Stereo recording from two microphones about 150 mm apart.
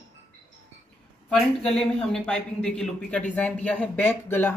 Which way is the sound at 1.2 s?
5° left (ahead or behind).